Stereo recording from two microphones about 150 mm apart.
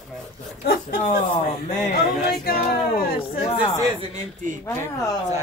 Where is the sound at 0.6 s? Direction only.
90° left.